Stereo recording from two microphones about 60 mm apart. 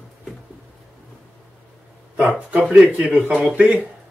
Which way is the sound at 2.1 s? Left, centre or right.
Right.